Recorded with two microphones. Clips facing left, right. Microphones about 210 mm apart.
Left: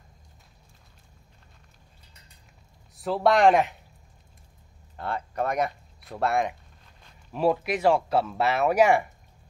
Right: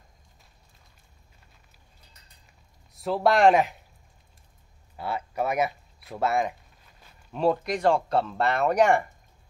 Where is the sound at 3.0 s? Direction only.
Centre (ahead or behind).